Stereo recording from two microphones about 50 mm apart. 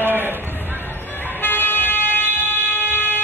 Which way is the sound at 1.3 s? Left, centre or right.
Left.